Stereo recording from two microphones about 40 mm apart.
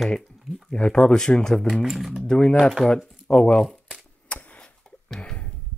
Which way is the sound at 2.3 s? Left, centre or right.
Centre.